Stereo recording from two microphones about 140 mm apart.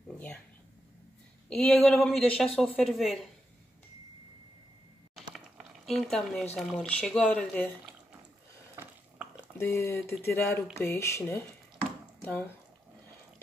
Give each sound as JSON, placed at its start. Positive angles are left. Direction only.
{"t": 1.5, "sound": "a woman's voice", "side_deg": 5}
{"t": 5.3, "sound": "a sound", "side_deg": 0}
{"t": 6.5, "sound": "a woman's voice", "side_deg": 5}
{"t": 9.6, "sound": "speech", "side_deg": 20}